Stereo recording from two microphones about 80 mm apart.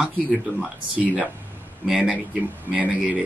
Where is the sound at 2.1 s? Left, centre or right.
Centre.